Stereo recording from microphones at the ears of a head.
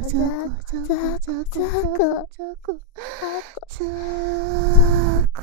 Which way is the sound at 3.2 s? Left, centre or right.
Left.